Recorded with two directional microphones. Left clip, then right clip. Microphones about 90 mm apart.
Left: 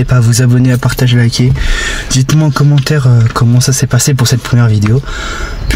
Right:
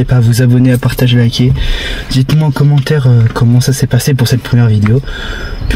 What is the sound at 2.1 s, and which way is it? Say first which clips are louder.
Speech: left 1 dB; 25° left (ahead or behind).